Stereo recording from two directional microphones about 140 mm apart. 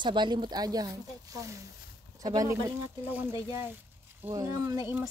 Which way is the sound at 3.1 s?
15° right (ahead or behind).